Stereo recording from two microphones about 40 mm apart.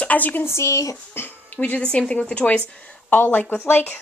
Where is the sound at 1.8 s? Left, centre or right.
Left.